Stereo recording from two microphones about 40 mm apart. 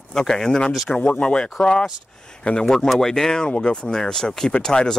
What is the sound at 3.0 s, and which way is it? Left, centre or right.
Speech, centre.